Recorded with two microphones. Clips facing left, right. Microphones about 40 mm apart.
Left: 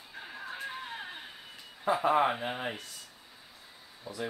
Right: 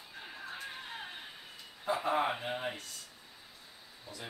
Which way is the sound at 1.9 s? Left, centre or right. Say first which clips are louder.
Left 5 dB; centre.